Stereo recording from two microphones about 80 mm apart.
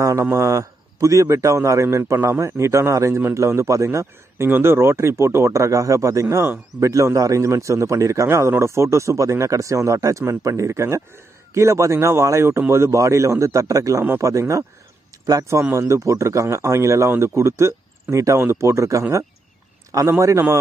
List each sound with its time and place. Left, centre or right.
0.0 s a man's voice: right
6.8 s a man's voice: right
15.7 s a man's voice: right